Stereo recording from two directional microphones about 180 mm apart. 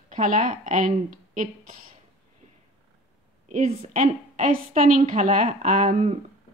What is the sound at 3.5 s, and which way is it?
A woman's voice, 45° right (ahead or behind).